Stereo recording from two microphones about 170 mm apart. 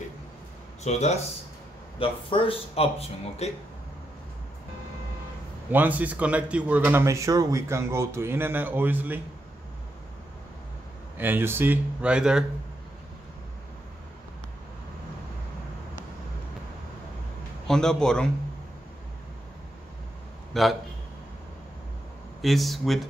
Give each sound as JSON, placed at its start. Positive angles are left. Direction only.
{"t": 0.8, "sound": "speech", "side_deg": 40}
{"t": 5.7, "sound": "speech", "side_deg": -10}
{"t": 11.1, "sound": "speech", "side_deg": -10}
{"t": 17.6, "sound": "a man's voice", "side_deg": 5}
{"t": 20.5, "sound": "a man's voice", "side_deg": 0}
{"t": 22.4, "sound": "a man's voice", "side_deg": 0}